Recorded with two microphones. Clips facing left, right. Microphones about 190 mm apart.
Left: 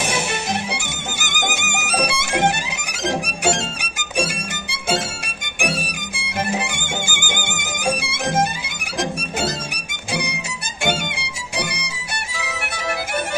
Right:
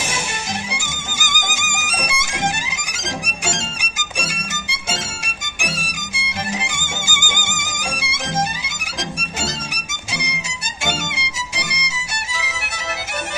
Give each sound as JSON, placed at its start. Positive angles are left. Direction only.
{"t": 0.7, "sound": "music", "side_deg": 60}
{"t": 10.1, "sound": "music", "side_deg": 55}